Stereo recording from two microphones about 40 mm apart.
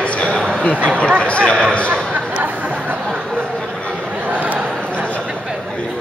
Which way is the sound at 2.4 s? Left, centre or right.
Right.